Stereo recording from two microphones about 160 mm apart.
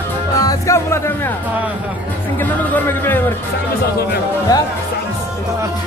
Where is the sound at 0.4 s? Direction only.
20° left (ahead or behind).